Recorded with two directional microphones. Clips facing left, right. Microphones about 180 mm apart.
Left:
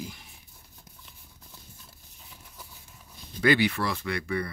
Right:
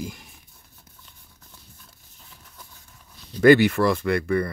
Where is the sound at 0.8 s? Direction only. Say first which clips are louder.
Left 1 dB; 5° left (ahead or behind).